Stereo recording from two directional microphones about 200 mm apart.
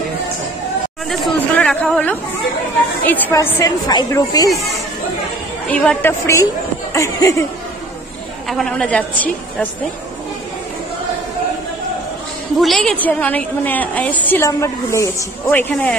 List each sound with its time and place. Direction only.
1.0 s chatter: centre (ahead or behind)
3.1 s a woman's voice: 10° left (ahead or behind)
5.7 s a woman's voice: 5° left (ahead or behind)
8.5 s a woman's voice: centre (ahead or behind)
12.5 s a woman's voice: centre (ahead or behind)